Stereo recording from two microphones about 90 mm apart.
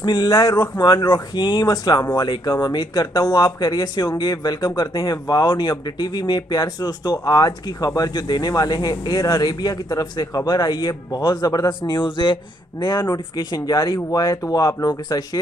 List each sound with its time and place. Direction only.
0.0 s speech: 60° left (ahead or behind)
0.3 s speech: 40° left (ahead or behind)
11.8 s speech: 60° left (ahead or behind)
12.8 s speech: 50° left (ahead or behind)